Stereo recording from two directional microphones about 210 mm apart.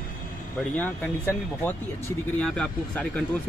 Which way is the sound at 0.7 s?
10° left (ahead or behind).